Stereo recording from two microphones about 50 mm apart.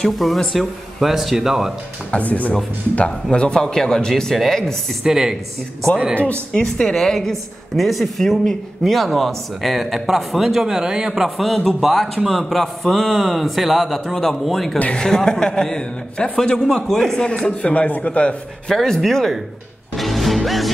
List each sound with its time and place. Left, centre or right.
0.0 s a woman's voice: centre
2.0 s a man's voice: left; by 4.7 s centre
5.0 s speech: centre
6.5 s a woman's voice: centre
11.2 s a woman's voice: centre
15.0 s a man's voice: centre
18.7 s a woman's voice: centre
20.0 s music: centre